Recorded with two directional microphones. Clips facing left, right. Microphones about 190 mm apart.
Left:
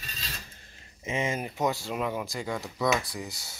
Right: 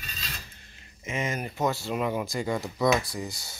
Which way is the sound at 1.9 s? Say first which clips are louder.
Right 3 dB; centre (ahead or behind).